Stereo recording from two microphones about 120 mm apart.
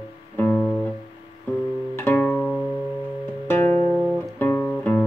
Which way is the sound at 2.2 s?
5° left (ahead or behind).